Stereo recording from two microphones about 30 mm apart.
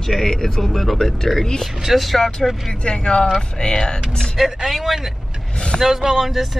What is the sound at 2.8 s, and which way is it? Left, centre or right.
Speech, left.